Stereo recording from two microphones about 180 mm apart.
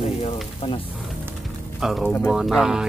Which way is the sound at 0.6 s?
30° left (ahead or behind).